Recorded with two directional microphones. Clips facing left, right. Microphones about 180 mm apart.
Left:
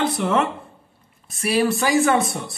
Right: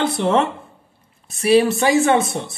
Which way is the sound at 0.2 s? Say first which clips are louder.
Right 3 dB; 30° right (ahead or behind).